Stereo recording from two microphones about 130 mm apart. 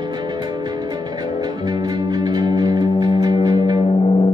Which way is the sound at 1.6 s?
35° right (ahead or behind).